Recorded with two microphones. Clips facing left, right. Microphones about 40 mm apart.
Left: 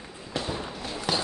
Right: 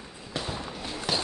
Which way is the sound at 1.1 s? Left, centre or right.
Centre.